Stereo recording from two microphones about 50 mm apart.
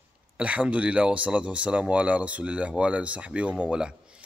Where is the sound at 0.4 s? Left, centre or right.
Right.